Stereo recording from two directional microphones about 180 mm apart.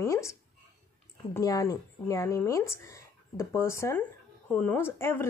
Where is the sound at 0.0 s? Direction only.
15° left (ahead or behind).